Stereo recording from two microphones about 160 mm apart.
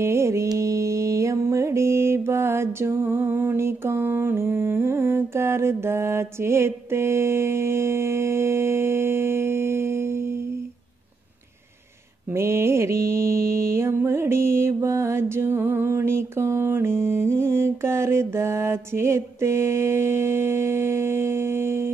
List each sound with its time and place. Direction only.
0.0 s music: 15° right (ahead or behind)
12.3 s mantra: 15° right (ahead or behind)